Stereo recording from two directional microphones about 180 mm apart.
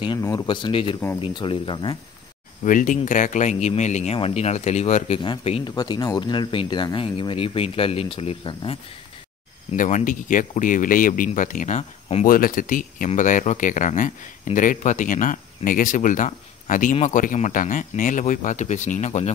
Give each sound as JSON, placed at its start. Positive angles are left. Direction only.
{"t": 0.0, "sound": "speech", "side_deg": 20}
{"t": 2.6, "sound": "speech", "side_deg": 45}
{"t": 9.7, "sound": "speech", "side_deg": 45}